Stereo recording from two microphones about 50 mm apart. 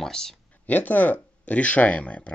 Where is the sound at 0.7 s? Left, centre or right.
Left.